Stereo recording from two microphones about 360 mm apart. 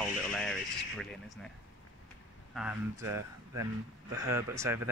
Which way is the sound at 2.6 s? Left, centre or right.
Centre.